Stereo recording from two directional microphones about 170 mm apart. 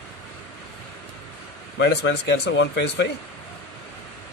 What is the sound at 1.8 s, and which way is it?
Speech, 85° left.